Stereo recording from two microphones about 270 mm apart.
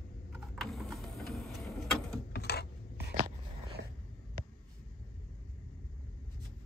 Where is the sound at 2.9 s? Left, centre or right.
Right.